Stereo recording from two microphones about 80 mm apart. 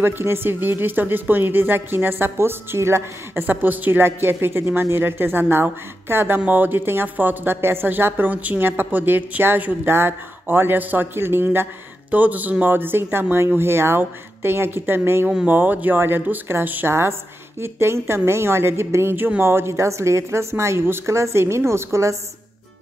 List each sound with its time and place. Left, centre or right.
0.0 s a woman's voice: right